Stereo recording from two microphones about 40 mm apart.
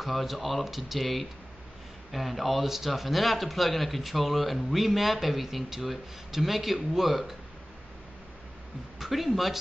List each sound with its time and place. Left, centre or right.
0.0 s a man's voice: centre
9.0 s a man's voice: centre